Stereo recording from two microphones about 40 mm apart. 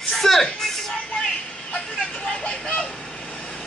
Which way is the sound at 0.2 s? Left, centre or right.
Centre.